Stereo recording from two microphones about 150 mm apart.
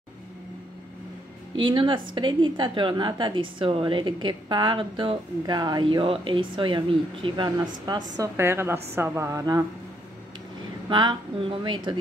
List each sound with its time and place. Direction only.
1.6 s a woman's voice: 30° right (ahead or behind)
8.4 s a woman's voice: 15° right (ahead or behind)
10.9 s a woman's voice: 30° right (ahead or behind)